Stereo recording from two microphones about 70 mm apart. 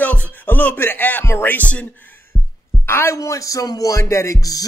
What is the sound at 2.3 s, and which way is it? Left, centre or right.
Heart sounds, centre.